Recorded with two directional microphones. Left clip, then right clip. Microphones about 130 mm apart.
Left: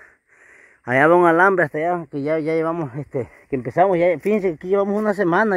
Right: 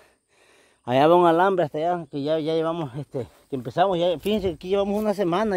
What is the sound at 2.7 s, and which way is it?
Speech, 25° left (ahead or behind).